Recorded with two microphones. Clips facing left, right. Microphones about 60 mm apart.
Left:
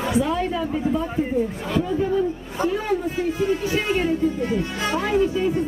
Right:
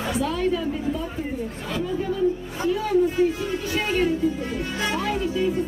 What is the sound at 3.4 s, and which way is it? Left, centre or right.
Speech, centre.